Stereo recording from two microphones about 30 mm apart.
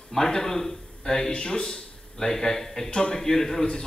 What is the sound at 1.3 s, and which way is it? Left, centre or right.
Speech, left.